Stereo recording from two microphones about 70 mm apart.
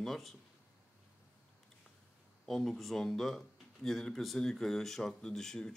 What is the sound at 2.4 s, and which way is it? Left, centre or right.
Speech, centre.